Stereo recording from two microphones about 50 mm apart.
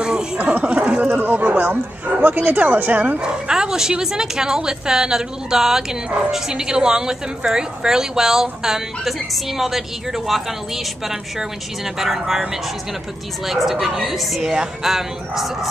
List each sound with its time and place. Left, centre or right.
0.0 s a sound: centre
1.2 s speech: right
3.2 s bow-wow: centre
4.0 s a woman's voice: centre
13.5 s a woman's voice: centre